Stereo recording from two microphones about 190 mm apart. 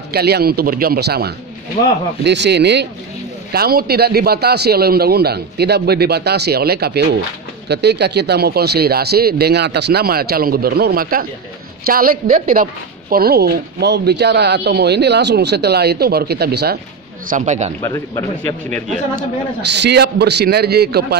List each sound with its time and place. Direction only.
0.1 s a woman's voice: 55° right (ahead or behind)
17.3 s speech: 40° right (ahead or behind)
19.1 s speech: 65° right (ahead or behind)